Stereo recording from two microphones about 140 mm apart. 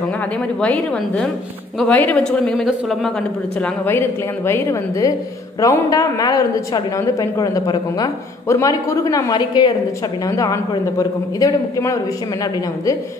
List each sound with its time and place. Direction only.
0.6 s a woman's voice: 10° left (ahead or behind)
3.6 s a woman's voice: 15° left (ahead or behind)